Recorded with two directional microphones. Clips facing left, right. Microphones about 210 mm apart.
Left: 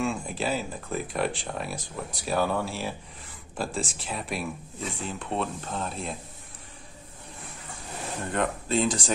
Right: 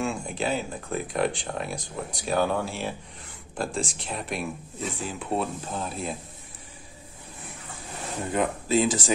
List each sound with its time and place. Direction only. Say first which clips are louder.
0.0 s speech: even; centre (ahead or behind)
8.3 s speech: right 3 dB; 5° right (ahead or behind)